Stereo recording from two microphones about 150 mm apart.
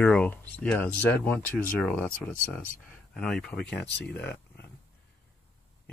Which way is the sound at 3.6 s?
90° left.